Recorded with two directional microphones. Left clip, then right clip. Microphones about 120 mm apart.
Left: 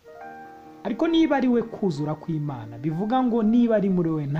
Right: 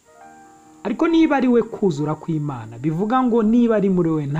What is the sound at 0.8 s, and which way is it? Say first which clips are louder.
Speech: right 4 dB; 10° right (ahead or behind).